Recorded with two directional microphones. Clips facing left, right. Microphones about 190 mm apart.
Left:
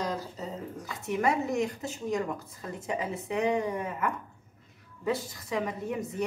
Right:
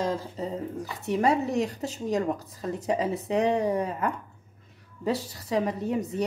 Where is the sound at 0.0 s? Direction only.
25° right (ahead or behind).